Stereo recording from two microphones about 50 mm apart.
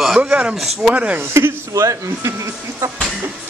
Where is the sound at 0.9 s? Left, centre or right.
Right.